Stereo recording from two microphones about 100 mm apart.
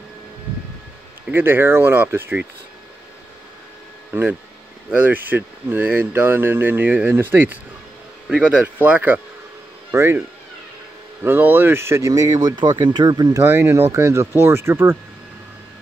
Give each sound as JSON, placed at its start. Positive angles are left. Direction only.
{"t": 1.3, "sound": "speech", "side_deg": -20}
{"t": 4.1, "sound": "speech", "side_deg": -20}
{"t": 11.2, "sound": "speech", "side_deg": -20}
{"t": 12.1, "sound": "speech", "side_deg": -35}
{"t": 13.4, "sound": "speech", "side_deg": -25}